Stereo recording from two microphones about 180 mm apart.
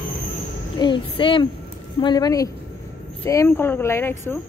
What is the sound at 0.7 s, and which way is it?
Speech, 25° left (ahead or behind).